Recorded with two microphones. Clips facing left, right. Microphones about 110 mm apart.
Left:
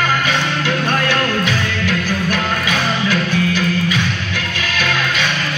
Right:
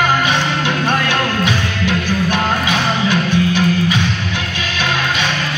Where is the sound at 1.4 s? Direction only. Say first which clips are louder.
Right 1 dB; 20° right (ahead or behind).